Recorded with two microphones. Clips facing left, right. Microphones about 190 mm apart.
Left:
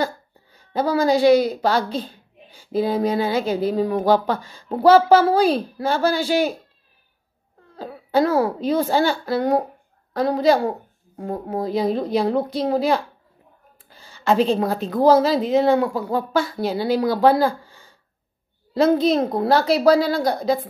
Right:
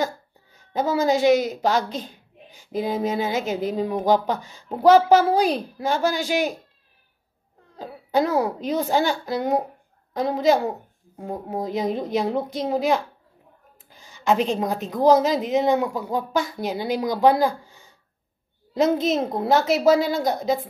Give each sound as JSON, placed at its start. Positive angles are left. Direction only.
{"t": 0.7, "sound": "a woman's voice", "side_deg": -20}
{"t": 7.8, "sound": "a woman's voice", "side_deg": -15}
{"t": 13.8, "sound": "a sound", "side_deg": -15}
{"t": 14.9, "sound": "a woman's voice", "side_deg": -15}